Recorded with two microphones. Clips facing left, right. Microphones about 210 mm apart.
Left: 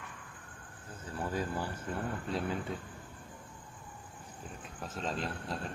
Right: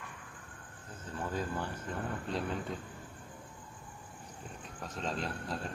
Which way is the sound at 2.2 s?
Centre (ahead or behind).